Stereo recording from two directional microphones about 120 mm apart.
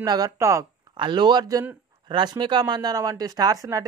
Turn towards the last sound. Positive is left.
turn(degrees=-30)  # may be behind; listen again after turning